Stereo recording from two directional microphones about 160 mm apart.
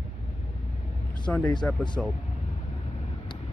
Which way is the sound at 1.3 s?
10° left (ahead or behind).